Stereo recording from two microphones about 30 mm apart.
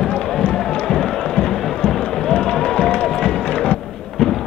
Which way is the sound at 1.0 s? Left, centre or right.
Centre.